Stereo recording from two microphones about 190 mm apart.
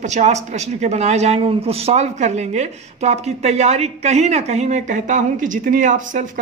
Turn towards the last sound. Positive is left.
turn(degrees=-40)  # may be behind; listen again after turning